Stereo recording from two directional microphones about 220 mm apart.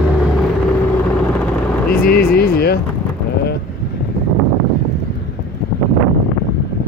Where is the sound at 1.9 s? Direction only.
45° left (ahead or behind).